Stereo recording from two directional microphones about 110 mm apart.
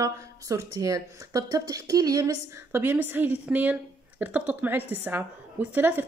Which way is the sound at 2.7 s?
20° right (ahead or behind).